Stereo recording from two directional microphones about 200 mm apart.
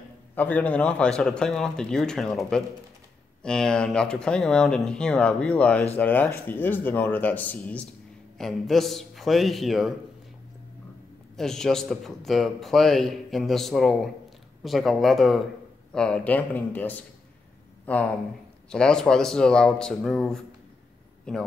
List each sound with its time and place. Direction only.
0.4 s a man's voice: 10° left (ahead or behind)
11.3 s a man's voice: centre (ahead or behind)